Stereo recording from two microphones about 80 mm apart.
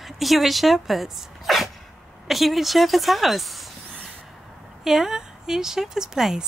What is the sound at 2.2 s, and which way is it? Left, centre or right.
Speech, centre.